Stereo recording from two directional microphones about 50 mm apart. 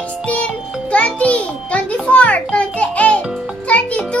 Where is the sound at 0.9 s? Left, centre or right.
Left.